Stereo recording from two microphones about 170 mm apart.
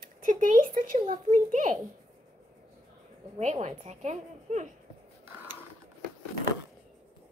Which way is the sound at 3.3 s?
40° right (ahead or behind).